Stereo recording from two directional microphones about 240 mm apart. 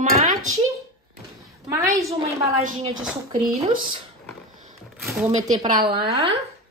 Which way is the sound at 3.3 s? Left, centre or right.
Right.